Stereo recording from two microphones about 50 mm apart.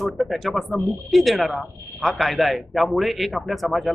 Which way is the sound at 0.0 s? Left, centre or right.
Centre.